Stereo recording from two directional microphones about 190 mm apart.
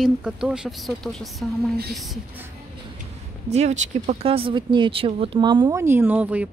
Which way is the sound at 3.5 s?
35° right (ahead or behind).